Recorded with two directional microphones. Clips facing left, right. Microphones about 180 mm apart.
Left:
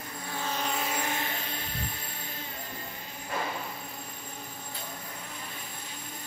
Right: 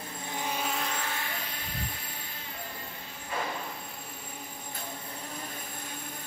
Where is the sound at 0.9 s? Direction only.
20° left (ahead or behind).